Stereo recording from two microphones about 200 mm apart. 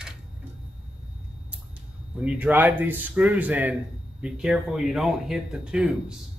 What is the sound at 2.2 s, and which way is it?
Speech, 10° right (ahead or behind).